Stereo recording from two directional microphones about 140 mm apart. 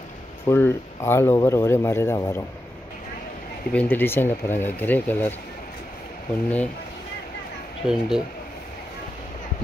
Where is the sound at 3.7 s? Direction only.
10° left (ahead or behind).